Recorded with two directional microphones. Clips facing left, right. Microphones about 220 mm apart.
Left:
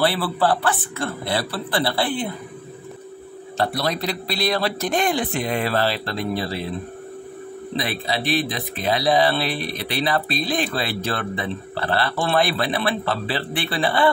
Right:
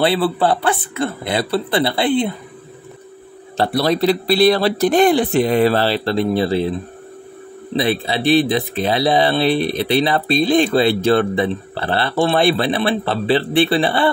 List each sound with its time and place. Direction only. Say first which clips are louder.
0.0 s speech: right 4 dB; 20° right (ahead or behind)
3.5 s speech: right 6 dB; 30° right (ahead or behind)
7.7 s speech: right 7 dB; 25° right (ahead or behind)